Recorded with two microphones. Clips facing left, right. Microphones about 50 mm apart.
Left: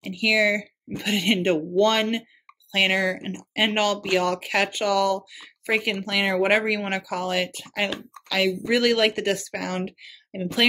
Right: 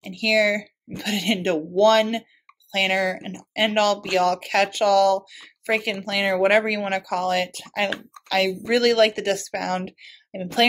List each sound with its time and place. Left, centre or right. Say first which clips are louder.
0.0 s speech: right 1 dB; centre